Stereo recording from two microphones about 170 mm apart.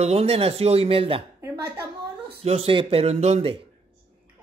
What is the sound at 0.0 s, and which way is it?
Speech, 40° right (ahead or behind).